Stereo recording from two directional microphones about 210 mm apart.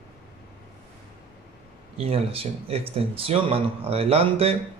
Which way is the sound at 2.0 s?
25° right (ahead or behind).